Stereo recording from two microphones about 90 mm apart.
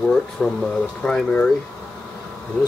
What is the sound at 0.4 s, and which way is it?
Speech, 10° left (ahead or behind).